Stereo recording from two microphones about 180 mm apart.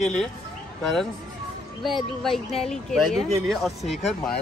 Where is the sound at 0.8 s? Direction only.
5° left (ahead or behind).